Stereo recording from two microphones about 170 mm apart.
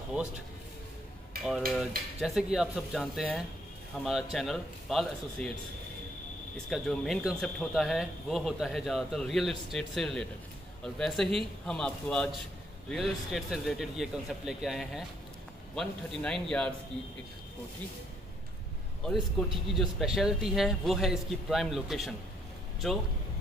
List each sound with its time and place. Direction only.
0.1 s speech: 5° right (ahead or behind)
1.3 s cutlery: 60° right (ahead or behind)
1.7 s speech: centre (ahead or behind)
6.7 s speech: centre (ahead or behind)
19.7 s speech: centre (ahead or behind)